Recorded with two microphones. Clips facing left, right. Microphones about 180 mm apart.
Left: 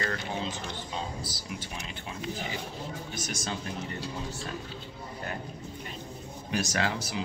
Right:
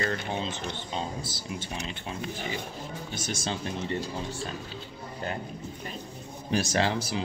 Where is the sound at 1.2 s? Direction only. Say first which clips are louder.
Right 2 dB; 25° right (ahead or behind).